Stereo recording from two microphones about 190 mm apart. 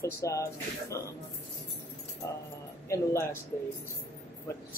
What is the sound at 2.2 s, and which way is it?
Speech, 20° left (ahead or behind).